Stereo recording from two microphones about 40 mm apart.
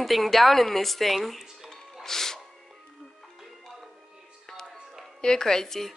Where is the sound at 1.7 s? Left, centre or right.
Centre.